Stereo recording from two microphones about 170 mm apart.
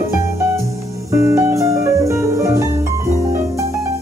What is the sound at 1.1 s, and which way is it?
Music, 15° right (ahead or behind).